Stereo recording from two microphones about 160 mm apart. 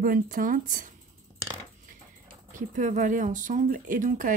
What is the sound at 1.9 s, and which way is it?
Speech, 55° right (ahead or behind).